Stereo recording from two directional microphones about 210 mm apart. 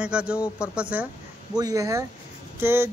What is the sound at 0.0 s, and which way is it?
Speech, 5° right (ahead or behind).